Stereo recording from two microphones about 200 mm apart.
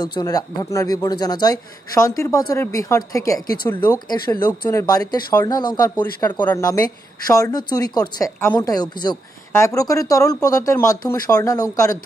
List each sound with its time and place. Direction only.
0.0 s speech: 20° left (ahead or behind)